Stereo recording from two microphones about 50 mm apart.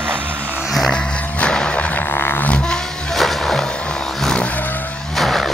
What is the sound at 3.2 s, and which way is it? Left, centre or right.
Music, centre.